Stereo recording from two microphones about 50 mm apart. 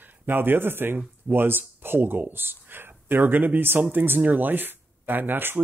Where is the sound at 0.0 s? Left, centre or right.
Right.